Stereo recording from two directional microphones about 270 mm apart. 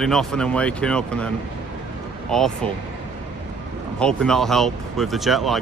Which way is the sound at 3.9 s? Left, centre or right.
Centre.